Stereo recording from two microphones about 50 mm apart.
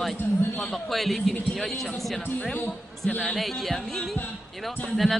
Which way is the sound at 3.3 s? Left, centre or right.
Centre.